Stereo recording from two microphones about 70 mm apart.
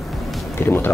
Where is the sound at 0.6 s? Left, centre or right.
Left.